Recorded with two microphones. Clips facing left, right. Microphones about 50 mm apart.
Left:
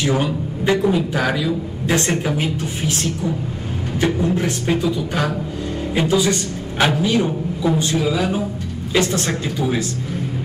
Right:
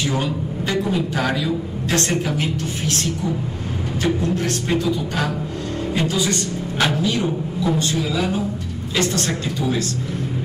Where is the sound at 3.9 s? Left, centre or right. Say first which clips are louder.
Left 2 dB; left.